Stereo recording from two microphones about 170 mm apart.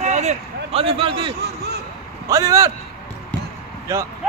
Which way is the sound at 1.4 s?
75° right (ahead or behind).